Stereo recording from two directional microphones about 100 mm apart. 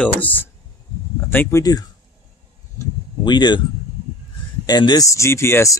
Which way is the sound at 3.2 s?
45° left (ahead or behind).